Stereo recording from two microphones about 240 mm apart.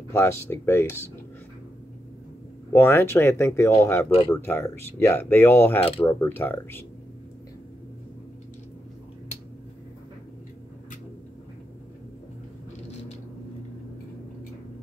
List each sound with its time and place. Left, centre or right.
0.1 s speech: centre
2.7 s speech: centre
5.8 s speech: left
6.0 s speech: centre